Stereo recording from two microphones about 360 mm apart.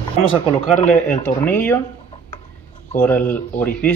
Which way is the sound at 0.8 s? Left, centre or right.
Centre.